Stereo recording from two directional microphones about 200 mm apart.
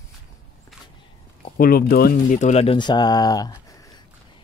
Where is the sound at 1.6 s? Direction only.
50° left (ahead or behind); by 3.5 s 20° left (ahead or behind).